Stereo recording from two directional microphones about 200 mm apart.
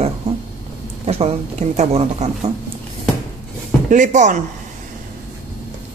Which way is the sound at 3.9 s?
40° right (ahead or behind).